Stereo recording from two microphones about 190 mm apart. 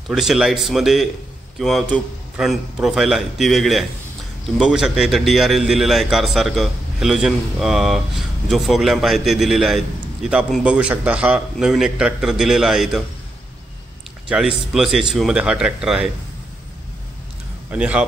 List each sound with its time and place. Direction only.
0.1 s a man's voice: centre (ahead or behind)
14.3 s a man's voice: centre (ahead or behind)
17.6 s speech: 5° right (ahead or behind)